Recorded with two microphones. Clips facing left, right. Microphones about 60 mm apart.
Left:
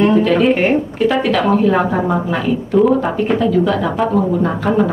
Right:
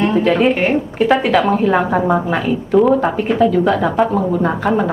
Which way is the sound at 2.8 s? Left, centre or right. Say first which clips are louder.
Even; centre.